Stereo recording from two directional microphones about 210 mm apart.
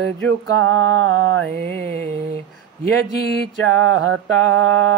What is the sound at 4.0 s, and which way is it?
Mantra, 75° right (ahead or behind).